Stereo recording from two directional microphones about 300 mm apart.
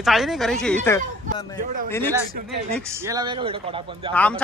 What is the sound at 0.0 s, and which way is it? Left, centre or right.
Speech, centre.